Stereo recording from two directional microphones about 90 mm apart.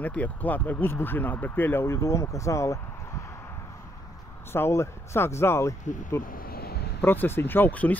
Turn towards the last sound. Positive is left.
turn(degrees=15)  # may be behind; listen again after turning